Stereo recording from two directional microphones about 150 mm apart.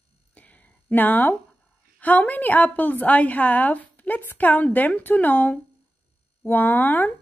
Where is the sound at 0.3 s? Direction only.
10° left (ahead or behind).